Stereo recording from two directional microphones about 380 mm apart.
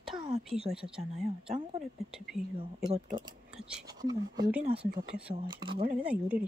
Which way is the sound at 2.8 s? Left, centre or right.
Centre.